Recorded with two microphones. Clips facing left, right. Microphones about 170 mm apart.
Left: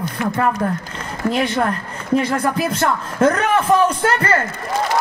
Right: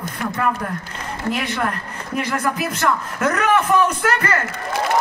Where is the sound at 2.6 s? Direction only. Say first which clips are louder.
Left 2 dB; 30° left (ahead or behind).